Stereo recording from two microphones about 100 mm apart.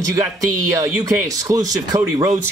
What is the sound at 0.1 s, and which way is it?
Speech, 35° right (ahead or behind).